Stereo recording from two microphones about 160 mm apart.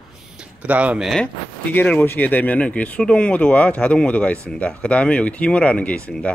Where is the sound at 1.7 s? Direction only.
10° left (ahead or behind).